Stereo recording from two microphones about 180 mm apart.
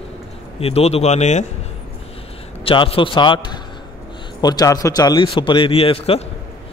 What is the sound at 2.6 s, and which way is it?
A man's voice, 30° left (ahead or behind).